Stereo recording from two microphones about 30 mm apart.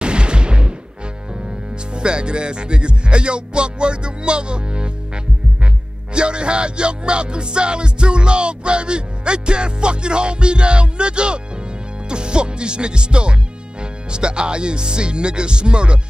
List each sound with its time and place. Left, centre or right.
0.0 s artillery fire: right
2.0 s speech: right
6.1 s music: right
12.1 s speech: right